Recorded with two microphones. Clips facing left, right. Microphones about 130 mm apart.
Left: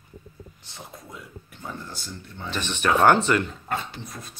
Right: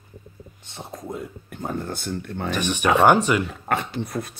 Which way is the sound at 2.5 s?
10° right (ahead or behind).